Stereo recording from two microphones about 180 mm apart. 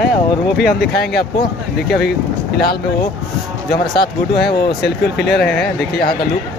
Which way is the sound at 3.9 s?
65° left (ahead or behind).